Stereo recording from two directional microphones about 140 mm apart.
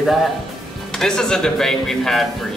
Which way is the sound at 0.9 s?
5° left (ahead or behind).